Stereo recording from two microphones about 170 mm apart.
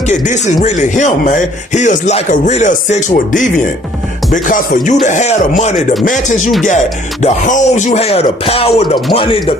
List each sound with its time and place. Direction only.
0.1 s speech: 45° left (ahead or behind)